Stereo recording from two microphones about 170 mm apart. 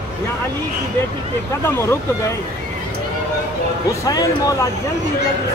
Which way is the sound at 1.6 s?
15° left (ahead or behind).